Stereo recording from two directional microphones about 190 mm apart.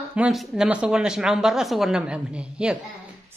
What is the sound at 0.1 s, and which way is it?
Speech, 5° right (ahead or behind).